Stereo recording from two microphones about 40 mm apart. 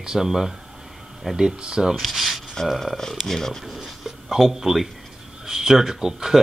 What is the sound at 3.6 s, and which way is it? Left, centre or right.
Speech, centre.